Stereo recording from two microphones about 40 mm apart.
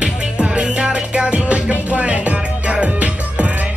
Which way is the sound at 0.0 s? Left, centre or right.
Right.